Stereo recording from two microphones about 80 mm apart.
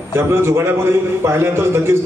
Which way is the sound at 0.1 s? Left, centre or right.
Right.